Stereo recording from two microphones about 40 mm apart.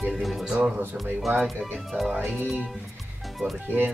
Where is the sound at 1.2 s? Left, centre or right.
Centre.